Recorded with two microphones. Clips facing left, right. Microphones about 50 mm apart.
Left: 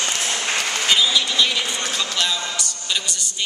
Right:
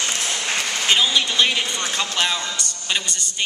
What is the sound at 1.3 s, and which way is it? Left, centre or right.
A man's voice, right.